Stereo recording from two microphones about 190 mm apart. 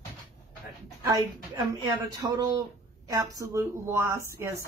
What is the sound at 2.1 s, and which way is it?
A woman's voice, 20° right (ahead or behind).